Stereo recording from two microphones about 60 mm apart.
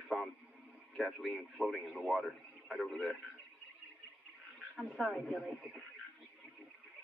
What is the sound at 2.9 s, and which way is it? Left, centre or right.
Speech, centre.